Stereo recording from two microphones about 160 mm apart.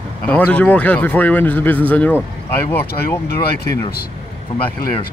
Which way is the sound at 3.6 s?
70° left (ahead or behind).